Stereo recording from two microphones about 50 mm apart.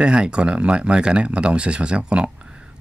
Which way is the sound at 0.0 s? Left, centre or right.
Centre.